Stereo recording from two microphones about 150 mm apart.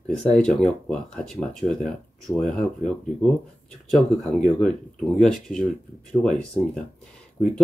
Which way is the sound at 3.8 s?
Centre (ahead or behind).